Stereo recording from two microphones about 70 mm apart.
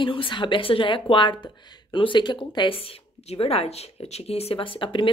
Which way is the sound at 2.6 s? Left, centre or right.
Left.